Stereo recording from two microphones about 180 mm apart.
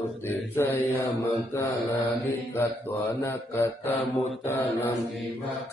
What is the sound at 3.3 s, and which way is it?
Mantra, 10° left (ahead or behind).